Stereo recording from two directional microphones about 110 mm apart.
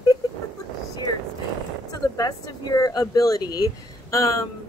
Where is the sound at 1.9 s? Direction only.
35° left (ahead or behind).